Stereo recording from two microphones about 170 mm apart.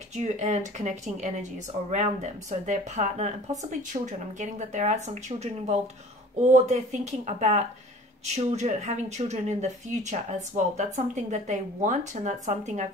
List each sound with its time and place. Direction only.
0.1 s speech: 45° right (ahead or behind)